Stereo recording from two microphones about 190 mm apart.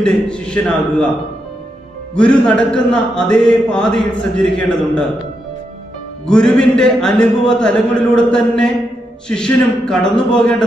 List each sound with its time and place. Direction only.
0.0 s a man's voice: 5° left (ahead or behind)
2.1 s a man's voice: 5° left (ahead or behind)
6.2 s a man's voice: 5° left (ahead or behind)